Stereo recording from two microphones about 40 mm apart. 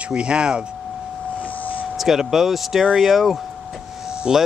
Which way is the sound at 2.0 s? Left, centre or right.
Centre.